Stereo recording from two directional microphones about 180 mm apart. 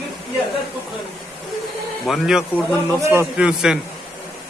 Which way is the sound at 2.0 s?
Centre (ahead or behind).